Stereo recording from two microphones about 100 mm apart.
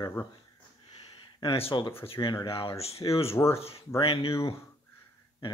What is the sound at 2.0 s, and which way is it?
Speech, 70° left (ahead or behind).